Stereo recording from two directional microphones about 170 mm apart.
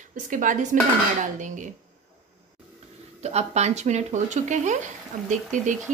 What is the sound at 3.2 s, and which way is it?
A woman's voice, 40° right (ahead or behind).